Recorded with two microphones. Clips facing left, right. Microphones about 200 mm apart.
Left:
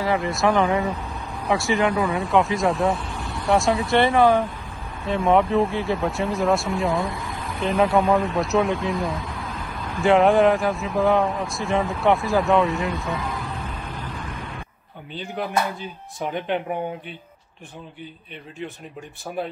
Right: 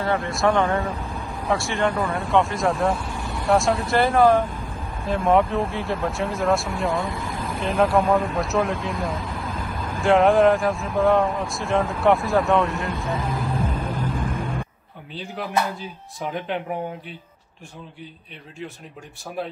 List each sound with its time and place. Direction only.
0.0 s speech: centre (ahead or behind)
13.8 s vehicle: 45° right (ahead or behind)
15.1 s speech: centre (ahead or behind)